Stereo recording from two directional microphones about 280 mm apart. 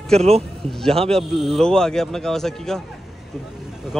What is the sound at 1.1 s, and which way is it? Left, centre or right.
Speech, centre.